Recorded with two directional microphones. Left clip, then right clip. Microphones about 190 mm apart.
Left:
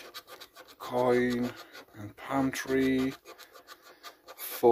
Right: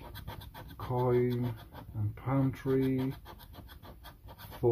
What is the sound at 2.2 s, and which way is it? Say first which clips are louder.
Speech: left 4 dB; 45° left (ahead or behind).